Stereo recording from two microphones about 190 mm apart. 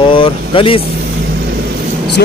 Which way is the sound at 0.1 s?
25° left (ahead or behind).